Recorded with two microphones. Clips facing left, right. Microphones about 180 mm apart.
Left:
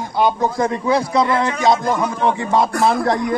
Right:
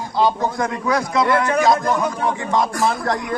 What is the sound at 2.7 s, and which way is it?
Speech, 60° left (ahead or behind).